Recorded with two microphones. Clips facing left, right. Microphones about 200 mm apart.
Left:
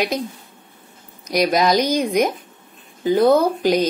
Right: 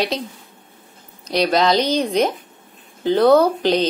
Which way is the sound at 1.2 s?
10° left (ahead or behind).